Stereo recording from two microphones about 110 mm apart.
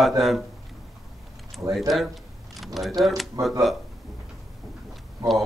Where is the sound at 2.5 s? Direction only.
Centre (ahead or behind).